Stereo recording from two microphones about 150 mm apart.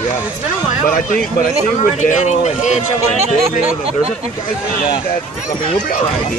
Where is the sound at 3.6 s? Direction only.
40° right (ahead or behind).